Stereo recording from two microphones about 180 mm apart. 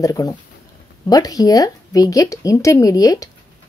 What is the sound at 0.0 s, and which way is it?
A woman's voice, 20° left (ahead or behind).